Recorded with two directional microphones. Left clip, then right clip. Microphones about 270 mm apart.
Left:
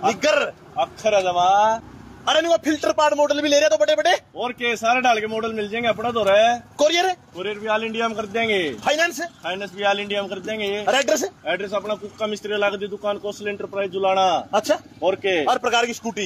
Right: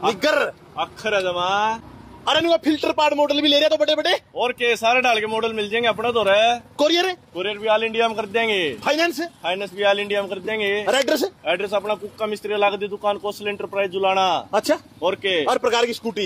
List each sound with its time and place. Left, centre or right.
0.1 s a man's voice: right
2.2 s a man's voice: centre
4.4 s a man's voice: right
6.8 s a man's voice: centre
7.3 s a man's voice: right
8.8 s a man's voice: centre
9.4 s a man's voice: right
10.9 s a man's voice: centre
11.4 s a man's voice: right
14.5 s a man's voice: centre
15.0 s a man's voice: right
15.4 s a man's voice: centre